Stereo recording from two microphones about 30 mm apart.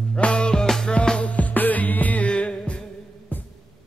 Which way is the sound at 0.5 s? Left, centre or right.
Centre.